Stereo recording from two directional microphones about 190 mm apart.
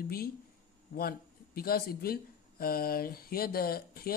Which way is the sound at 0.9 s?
55° left (ahead or behind).